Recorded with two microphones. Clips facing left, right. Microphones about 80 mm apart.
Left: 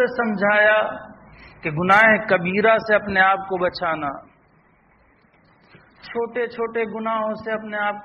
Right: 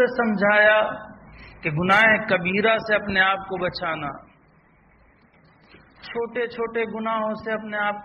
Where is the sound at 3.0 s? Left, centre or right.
Left.